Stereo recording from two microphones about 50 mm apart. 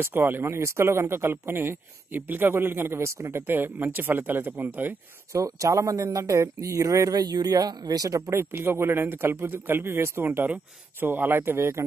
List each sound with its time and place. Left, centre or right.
0.0 s speech: right
3.0 s a woman's voice: right
3.4 s speech: right
5.3 s speech: right
8.3 s speech: right
10.2 s speech: right